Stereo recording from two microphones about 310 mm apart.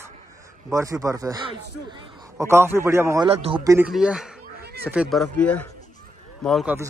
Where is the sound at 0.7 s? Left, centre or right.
Centre.